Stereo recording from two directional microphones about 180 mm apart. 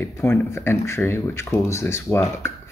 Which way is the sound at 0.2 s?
10° left (ahead or behind).